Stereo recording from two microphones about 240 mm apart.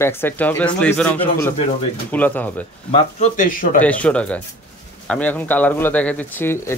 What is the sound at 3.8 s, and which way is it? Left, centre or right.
Speech, centre.